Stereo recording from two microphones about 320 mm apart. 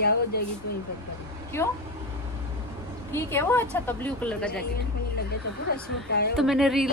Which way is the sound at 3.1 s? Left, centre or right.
Centre.